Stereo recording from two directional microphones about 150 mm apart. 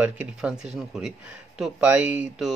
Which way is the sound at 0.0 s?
10° right (ahead or behind).